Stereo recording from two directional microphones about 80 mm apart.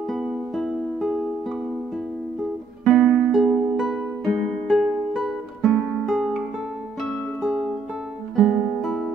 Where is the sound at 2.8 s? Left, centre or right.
Centre.